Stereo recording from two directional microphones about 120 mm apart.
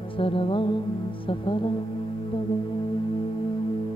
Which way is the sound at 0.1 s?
50° left (ahead or behind).